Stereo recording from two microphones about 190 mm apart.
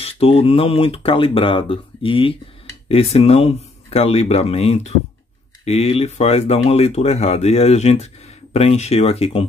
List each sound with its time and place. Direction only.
0.0 s speech: 30° left (ahead or behind)